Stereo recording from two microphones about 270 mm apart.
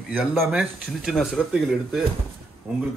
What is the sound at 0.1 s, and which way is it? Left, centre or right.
Speech, centre.